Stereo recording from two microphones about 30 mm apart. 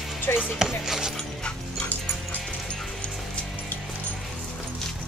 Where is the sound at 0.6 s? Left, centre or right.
Right.